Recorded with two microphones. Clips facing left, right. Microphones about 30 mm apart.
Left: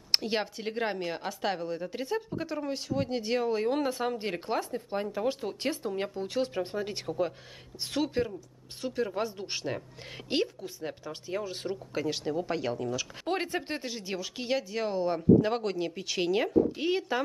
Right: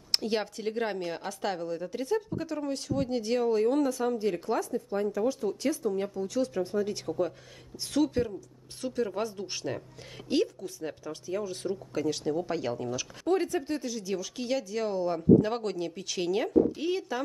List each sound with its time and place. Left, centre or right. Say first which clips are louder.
0.1 s speech: even; centre
3.7 s speech: right 2 dB; left; by 12.8 s centre
13.2 s speech: right 6 dB; left